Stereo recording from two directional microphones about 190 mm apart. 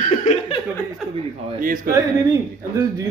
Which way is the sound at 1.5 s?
45° right (ahead or behind).